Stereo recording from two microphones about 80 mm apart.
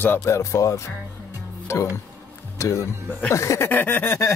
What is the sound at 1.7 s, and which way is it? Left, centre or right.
Speech, left.